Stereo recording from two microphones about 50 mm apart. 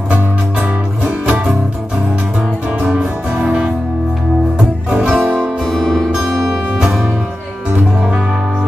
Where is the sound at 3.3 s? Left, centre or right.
Right.